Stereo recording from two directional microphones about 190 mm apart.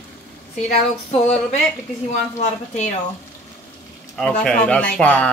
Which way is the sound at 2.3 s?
40° left (ahead or behind).